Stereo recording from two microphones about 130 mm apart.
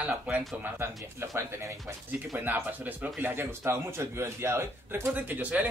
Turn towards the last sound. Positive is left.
turn(degrees=-10)  # may be behind; listen again after turning